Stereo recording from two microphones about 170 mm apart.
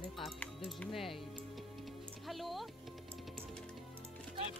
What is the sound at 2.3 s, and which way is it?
Music, centre (ahead or behind).